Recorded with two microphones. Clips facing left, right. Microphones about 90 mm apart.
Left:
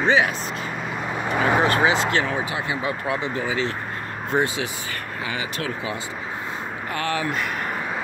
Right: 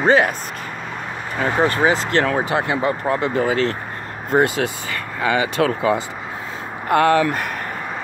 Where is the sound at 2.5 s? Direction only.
55° right (ahead or behind).